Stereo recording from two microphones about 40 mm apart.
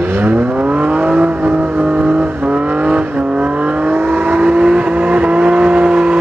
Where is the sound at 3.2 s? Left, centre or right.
Right.